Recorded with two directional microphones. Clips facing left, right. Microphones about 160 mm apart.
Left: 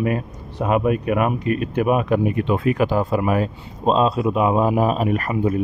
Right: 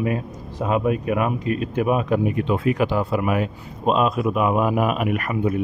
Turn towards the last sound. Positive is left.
turn(degrees=35)  # may be behind; listen again after turning